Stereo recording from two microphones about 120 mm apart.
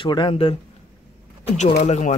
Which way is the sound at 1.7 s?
70° left (ahead or behind).